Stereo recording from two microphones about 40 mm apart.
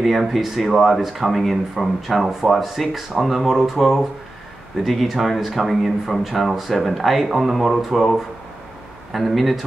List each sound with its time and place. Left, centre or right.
0.0 s speech: centre